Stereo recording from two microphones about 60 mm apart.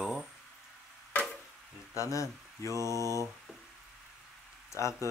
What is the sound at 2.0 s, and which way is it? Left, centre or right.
Speech, left.